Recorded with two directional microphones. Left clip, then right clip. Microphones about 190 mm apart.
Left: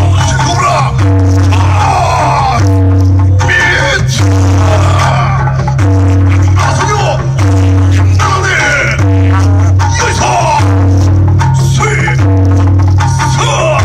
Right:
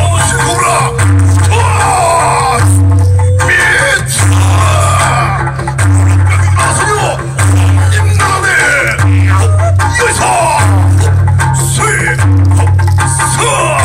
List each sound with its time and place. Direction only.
0.4 s music: 25° right (ahead or behind)
2.1 s music: 25° right (ahead or behind)
4.9 s chicken: 25° right (ahead or behind)
6.8 s music: 25° right (ahead or behind)
8.3 s music: 25° right (ahead or behind)
9.9 s music: 25° right (ahead or behind)
13.2 s music: 25° right (ahead or behind)